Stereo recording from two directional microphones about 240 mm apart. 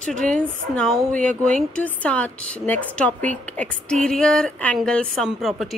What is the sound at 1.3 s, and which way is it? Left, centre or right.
Speech, right.